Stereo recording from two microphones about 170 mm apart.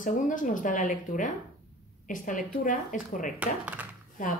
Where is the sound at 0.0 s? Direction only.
50° left (ahead or behind).